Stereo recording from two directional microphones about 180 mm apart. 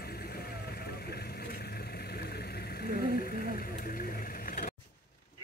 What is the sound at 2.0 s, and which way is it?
Vehicle, 60° left (ahead or behind).